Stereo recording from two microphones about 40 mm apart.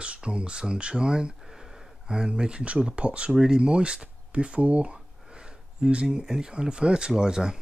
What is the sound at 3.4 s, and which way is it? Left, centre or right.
Speech, centre.